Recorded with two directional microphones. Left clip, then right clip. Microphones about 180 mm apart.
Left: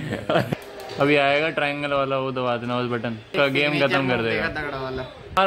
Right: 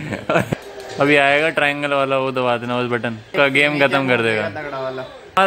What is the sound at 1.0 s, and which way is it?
Speech, 5° right (ahead or behind).